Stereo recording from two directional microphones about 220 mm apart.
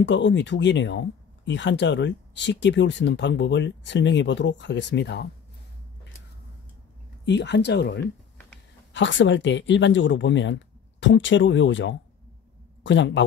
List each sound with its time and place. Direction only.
0.0 s speech: 55° left (ahead or behind)
7.2 s speech: 50° left (ahead or behind)